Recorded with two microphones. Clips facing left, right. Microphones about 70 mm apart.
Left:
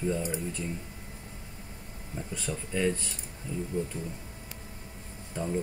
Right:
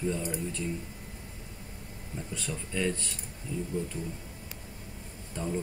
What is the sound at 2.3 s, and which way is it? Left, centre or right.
Speech, centre.